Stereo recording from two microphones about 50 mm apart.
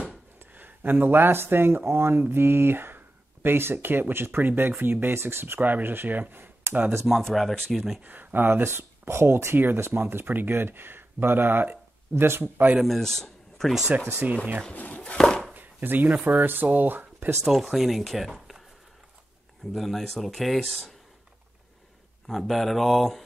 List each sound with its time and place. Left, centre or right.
0.5 s speech: right
5.0 s speech: right
7.1 s speech: centre
8.0 s speech: right
10.2 s speech: right
12.7 s speech: centre
14.2 s speech: right
14.8 s speech: left
15.1 s a sound: centre
15.5 s chopping: right
16.3 s speech: right
17.4 s speech: centre
19.7 s speech: centre
22.3 s speech: centre